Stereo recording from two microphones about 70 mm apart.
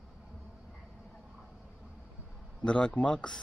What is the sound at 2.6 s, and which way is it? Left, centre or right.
Speech, centre.